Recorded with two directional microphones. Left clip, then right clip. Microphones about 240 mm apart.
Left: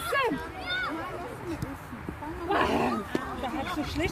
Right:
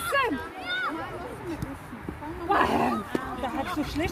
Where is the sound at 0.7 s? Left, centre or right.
Centre.